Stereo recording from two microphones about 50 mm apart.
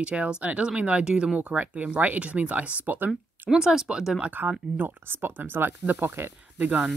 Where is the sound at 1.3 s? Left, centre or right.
Right.